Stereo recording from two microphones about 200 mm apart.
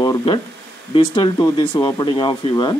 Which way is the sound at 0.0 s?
20° left (ahead or behind).